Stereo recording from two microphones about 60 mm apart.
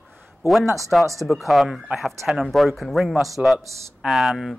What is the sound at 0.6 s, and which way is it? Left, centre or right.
Speech, right.